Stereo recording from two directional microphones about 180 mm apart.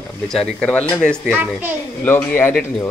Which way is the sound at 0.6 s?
5° left (ahead or behind).